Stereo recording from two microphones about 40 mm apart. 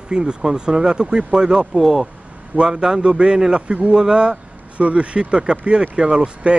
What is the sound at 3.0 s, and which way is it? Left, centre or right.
Speech, right.